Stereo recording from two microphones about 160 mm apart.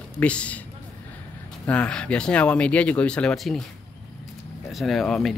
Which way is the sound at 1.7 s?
5° left (ahead or behind).